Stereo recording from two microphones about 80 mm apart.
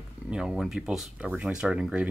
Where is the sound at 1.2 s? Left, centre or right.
Centre.